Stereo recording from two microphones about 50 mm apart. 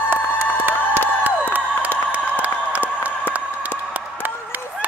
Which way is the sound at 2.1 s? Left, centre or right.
Right.